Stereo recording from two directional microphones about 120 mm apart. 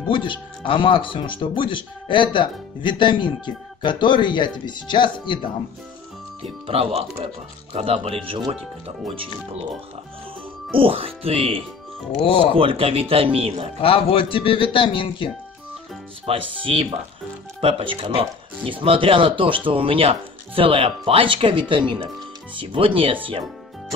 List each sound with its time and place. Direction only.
0.1 s speech: 45° left (ahead or behind)
6.4 s speech: 55° right (ahead or behind)
10.8 s speech: 50° right (ahead or behind)
12.2 s speech: 45° left (ahead or behind)
12.5 s speech: 50° right (ahead or behind)
13.7 s speech: 50° left (ahead or behind)
16.3 s speech: 50° right (ahead or behind)